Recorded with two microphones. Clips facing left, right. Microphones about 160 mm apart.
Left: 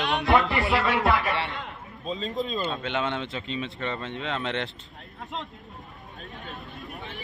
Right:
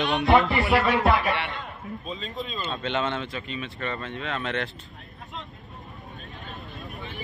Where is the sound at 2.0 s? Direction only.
40° left (ahead or behind).